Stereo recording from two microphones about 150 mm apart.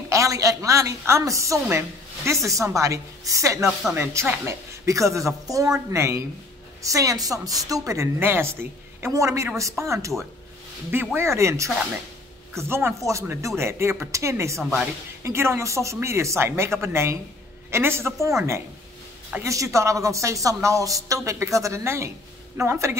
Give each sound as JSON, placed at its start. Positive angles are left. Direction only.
{"t": 0.1, "sound": "a woman's voice", "side_deg": -20}
{"t": 11.1, "sound": "a woman's voice", "side_deg": -20}
{"t": 19.3, "sound": "a woman's voice", "side_deg": -20}